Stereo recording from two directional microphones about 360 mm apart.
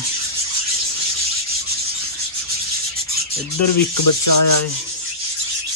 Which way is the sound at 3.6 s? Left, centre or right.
Left.